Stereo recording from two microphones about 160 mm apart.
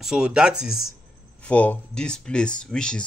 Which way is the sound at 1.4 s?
10° left (ahead or behind).